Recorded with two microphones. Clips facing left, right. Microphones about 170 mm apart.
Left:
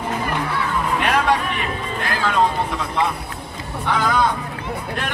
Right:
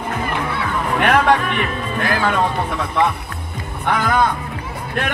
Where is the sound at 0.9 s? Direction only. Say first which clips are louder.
Right 5 dB; 60° right (ahead or behind).